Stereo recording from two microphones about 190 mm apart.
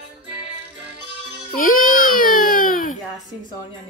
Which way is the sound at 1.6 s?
45° left (ahead or behind).